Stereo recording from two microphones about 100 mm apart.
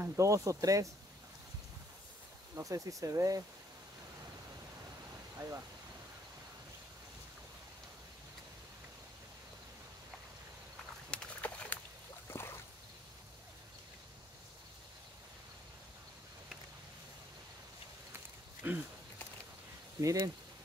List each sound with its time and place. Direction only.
0.0 s speech: 30° right (ahead or behind)
2.5 s speech: 35° right (ahead or behind)
11.1 s a sound: 10° left (ahead or behind)
12.3 s a sound: 25° left (ahead or behind)
18.6 s speech: 20° right (ahead or behind)
20.0 s speech: 35° right (ahead or behind)